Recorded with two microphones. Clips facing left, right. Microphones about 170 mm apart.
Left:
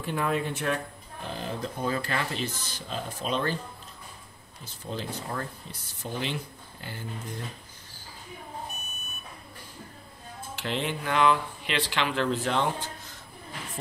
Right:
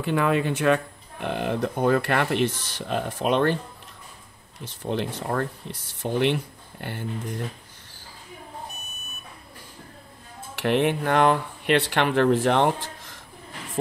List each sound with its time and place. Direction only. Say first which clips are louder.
0.0 s speech: right 6 dB; 90° right
1.2 s speech: right 8 dB; 65° right (ahead or behind)
4.6 s speech: right 8 dB; 70° right (ahead or behind)
10.6 s speech: right 9 dB; 60° right (ahead or behind)